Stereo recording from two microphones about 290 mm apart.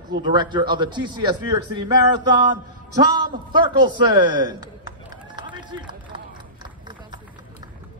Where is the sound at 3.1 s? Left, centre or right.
Centre.